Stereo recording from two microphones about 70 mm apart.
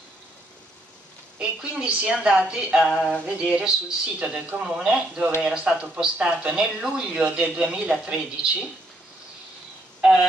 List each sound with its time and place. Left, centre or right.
1.4 s a woman's voice: centre